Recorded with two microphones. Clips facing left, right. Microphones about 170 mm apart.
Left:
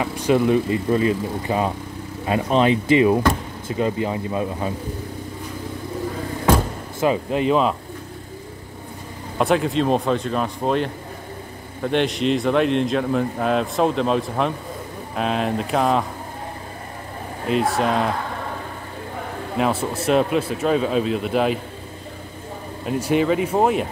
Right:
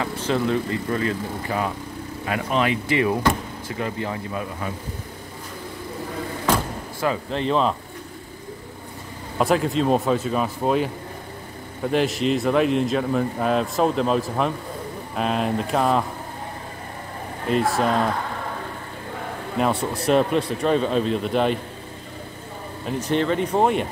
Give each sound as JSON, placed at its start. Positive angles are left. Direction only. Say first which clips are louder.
{"t": 0.0, "sound": "speech", "louder": "left 5 dB", "side_deg": 15}
{"t": 7.0, "sound": "speech", "louder": "left 5 dB", "side_deg": 15}
{"t": 9.4, "sound": "speech", "louder": "left 1 dB", "side_deg": 0}
{"t": 17.5, "sound": "speech", "louder": "left 1 dB", "side_deg": 0}
{"t": 19.6, "sound": "speech", "louder": "left 1 dB", "side_deg": 0}
{"t": 22.8, "sound": "speech", "louder": "left 3 dB", "side_deg": 10}